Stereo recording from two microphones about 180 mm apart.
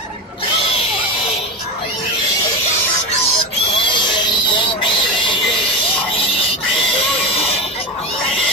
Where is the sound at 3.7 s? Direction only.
25° left (ahead or behind).